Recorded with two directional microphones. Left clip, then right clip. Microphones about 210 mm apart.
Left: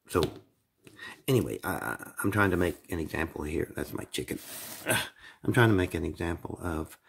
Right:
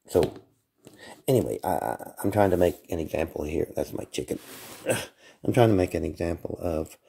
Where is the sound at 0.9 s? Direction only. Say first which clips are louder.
Right 4 dB; 5° left (ahead or behind).